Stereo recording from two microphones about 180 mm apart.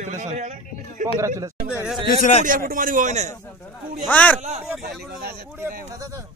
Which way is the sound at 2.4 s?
50° right (ahead or behind).